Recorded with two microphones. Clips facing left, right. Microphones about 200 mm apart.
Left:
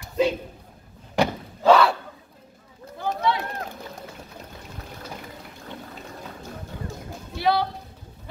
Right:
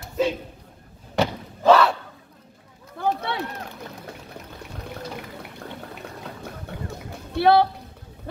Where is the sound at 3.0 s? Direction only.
60° right (ahead or behind).